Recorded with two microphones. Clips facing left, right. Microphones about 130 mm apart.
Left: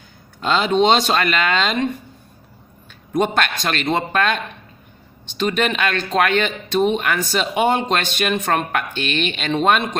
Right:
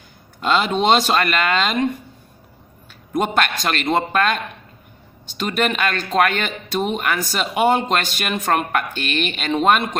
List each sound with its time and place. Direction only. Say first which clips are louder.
0.4 s speech: left 2 dB; centre (ahead or behind)
3.1 s speech: left 1 dB; 5° right (ahead or behind)
5.7 s speech: left 1 dB; 5° right (ahead or behind)